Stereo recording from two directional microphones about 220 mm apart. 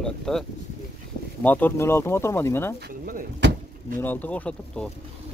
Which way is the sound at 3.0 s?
40° right (ahead or behind).